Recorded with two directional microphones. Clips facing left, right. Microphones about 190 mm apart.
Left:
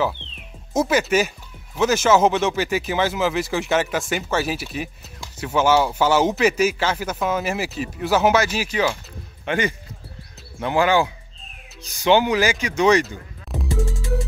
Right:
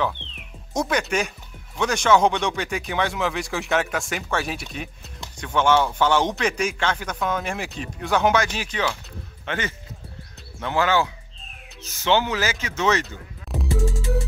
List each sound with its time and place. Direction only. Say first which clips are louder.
0.2 s music: even; 15° right (ahead or behind)
0.7 s speech: left 5 dB; 5° left (ahead or behind)